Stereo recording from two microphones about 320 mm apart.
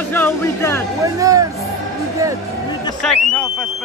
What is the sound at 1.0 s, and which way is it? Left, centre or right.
Speech, centre.